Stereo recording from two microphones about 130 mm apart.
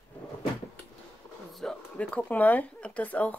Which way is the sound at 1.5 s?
5° left (ahead or behind).